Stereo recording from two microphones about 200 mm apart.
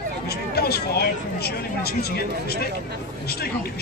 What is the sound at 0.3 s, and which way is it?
Speech, 50° left (ahead or behind).